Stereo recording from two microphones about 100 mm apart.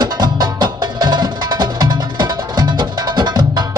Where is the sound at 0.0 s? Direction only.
40° right (ahead or behind).